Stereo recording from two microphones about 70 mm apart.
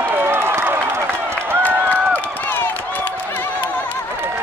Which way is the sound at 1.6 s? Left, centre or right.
Left.